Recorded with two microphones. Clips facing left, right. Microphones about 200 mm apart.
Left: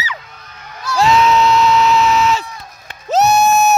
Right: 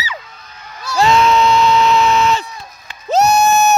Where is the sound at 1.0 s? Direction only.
5° left (ahead or behind).